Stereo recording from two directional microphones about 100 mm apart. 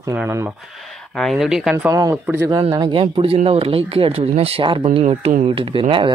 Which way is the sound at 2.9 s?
65° right (ahead or behind).